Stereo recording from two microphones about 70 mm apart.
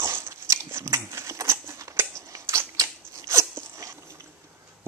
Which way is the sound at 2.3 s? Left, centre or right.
Right.